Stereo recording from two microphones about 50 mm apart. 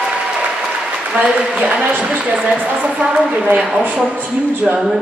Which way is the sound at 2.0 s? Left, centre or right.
Right.